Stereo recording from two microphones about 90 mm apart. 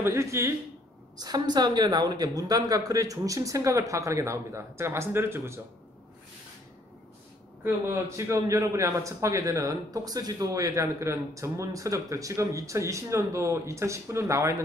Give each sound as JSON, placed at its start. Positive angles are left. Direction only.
{"t": 0.0, "sound": "a man's voice", "side_deg": -30}
{"t": 1.1, "sound": "a man's voice", "side_deg": -50}
{"t": 7.6, "sound": "a man's voice", "side_deg": -30}